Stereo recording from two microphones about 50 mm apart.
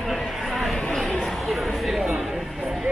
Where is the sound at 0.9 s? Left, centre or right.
Centre.